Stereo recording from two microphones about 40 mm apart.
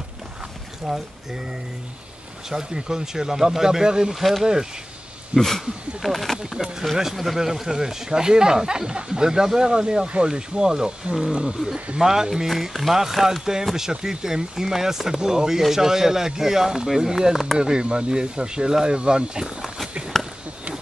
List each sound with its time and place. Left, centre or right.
0.9 s speech: centre
2.5 s speech: centre
4.1 s speech: centre
5.3 s speech: right
6.0 s speech: centre
17.6 s speech: right
20.1 s a sound: centre